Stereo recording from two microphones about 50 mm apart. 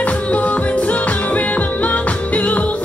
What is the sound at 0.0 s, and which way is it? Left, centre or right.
Music, left.